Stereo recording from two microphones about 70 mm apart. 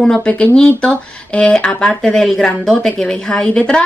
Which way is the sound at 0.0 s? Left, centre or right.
Centre.